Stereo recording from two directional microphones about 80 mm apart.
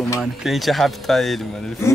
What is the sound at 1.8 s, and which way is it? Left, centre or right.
Speech, left.